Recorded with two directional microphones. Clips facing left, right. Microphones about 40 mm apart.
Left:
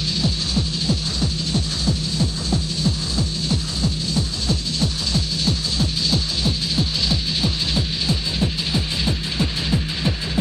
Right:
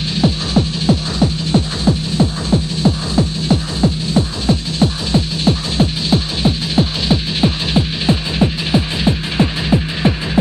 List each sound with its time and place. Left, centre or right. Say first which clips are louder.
0.2 s music: right 11 dB; right